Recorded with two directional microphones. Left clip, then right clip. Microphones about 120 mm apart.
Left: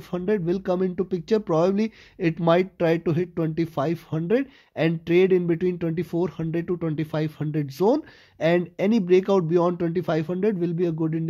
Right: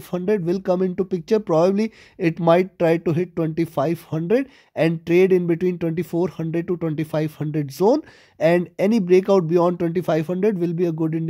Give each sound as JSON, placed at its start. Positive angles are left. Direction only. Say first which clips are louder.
{"t": 0.1, "sound": "speech", "louder": "right 3 dB", "side_deg": -35}